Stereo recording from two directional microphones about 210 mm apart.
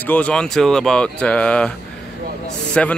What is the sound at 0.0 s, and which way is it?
A man's voice, 5° left (ahead or behind).